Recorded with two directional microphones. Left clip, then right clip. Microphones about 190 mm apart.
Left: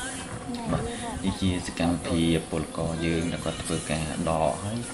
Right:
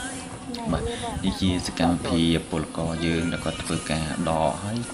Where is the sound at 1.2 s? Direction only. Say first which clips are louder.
Right 3 dB; 15° right (ahead or behind).